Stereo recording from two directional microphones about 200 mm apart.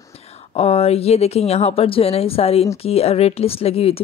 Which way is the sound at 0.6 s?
30° left (ahead or behind).